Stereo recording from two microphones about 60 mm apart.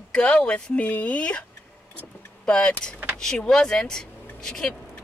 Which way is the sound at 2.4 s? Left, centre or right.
Centre.